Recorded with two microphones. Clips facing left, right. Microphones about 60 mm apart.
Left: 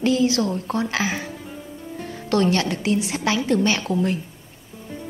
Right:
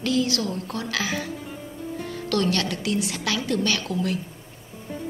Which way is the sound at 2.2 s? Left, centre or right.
Left.